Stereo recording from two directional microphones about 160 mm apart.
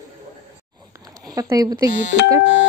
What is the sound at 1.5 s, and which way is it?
Speech, 25° right (ahead or behind).